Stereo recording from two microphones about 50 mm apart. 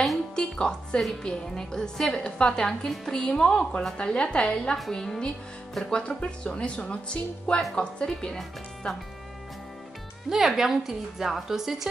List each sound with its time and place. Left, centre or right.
0.4 s a woman's voice: centre
4.9 s a woman's voice: centre
10.3 s a woman's voice: centre